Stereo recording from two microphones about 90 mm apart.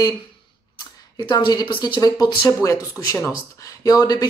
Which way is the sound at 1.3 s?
50° left (ahead or behind).